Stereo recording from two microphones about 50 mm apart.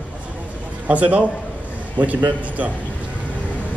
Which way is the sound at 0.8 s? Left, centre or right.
Right.